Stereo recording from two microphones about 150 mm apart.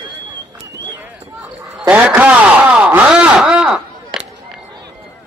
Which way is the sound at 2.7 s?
5° right (ahead or behind).